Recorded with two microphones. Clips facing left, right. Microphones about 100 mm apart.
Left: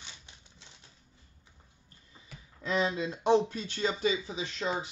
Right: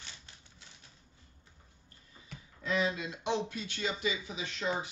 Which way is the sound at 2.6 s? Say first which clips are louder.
Left 2 dB; 30° left (ahead or behind).